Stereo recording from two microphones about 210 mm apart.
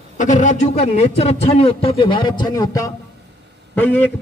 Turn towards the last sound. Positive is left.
turn(degrees=10)  # may be behind; listen again after turning